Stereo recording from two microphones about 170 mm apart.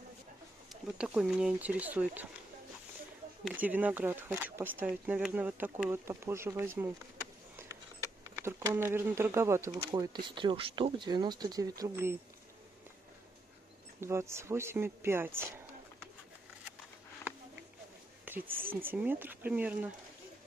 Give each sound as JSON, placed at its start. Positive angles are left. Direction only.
{"t": 0.9, "sound": "speech", "side_deg": -5}
{"t": 3.4, "sound": "speech", "side_deg": -10}
{"t": 7.5, "sound": "a sound", "side_deg": -15}
{"t": 9.8, "sound": "speech", "side_deg": -25}
{"t": 14.0, "sound": "speech", "side_deg": -15}
{"t": 18.2, "sound": "speech", "side_deg": -10}